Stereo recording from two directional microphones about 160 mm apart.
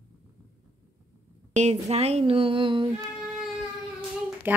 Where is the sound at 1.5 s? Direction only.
45° right (ahead or behind).